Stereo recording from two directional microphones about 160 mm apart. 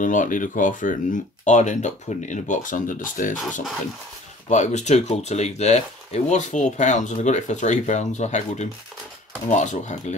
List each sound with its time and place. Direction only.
0.0 s speech: 55° left (ahead or behind)
4.5 s speech: 45° left (ahead or behind)